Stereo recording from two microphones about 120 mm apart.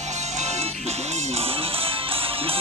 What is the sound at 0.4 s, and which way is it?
Music, 70° right (ahead or behind).